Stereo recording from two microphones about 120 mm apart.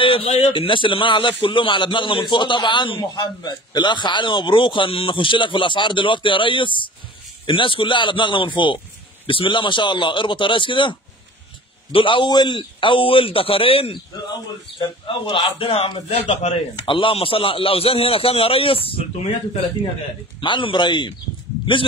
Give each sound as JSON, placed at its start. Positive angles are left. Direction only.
{"t": 0.0, "sound": "a man's voice", "side_deg": 50}
{"t": 20.3, "sound": "a man's voice", "side_deg": 45}